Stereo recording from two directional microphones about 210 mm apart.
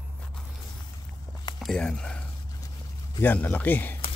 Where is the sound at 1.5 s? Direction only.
Centre (ahead or behind).